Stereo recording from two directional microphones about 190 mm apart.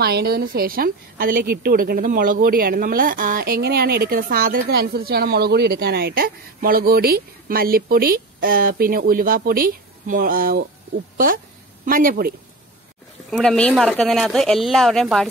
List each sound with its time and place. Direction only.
0.0 s a woman's voice: 55° right (ahead or behind)
11.8 s a woman's voice: 45° right (ahead or behind)
13.3 s speech: 5° left (ahead or behind)